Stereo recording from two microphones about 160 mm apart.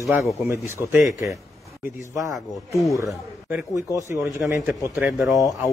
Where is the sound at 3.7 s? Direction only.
20° right (ahead or behind).